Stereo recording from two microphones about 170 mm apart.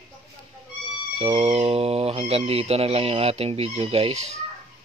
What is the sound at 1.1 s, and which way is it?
Speech, 35° right (ahead or behind).